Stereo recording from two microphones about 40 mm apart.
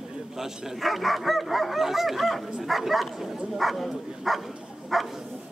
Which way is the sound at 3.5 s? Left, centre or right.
Centre.